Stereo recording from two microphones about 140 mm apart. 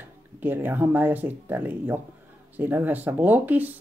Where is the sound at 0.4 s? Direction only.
15° right (ahead or behind).